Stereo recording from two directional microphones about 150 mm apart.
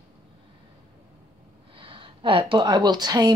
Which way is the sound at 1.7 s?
35° right (ahead or behind).